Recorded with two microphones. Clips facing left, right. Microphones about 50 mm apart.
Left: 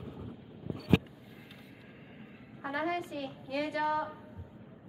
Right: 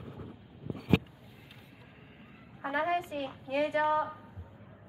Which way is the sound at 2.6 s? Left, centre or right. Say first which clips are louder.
Right 3 dB; right.